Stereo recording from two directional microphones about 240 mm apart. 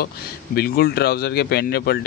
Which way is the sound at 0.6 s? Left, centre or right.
Left.